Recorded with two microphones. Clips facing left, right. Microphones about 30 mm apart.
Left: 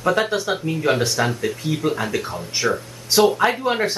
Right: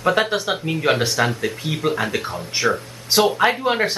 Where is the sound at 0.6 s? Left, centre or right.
Right.